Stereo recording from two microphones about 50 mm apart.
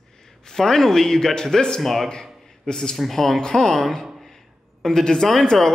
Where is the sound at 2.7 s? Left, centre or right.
Centre.